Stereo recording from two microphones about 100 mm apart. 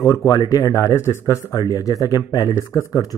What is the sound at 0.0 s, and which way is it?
Speech, 35° left (ahead or behind).